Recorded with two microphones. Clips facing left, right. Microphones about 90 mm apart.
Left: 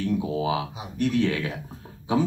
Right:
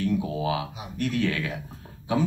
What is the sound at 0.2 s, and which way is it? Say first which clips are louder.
Speech: left 2 dB; 20° left (ahead or behind).